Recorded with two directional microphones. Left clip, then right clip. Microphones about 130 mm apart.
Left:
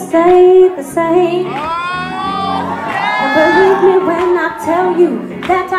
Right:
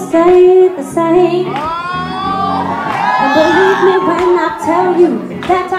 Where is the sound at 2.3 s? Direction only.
25° left (ahead or behind).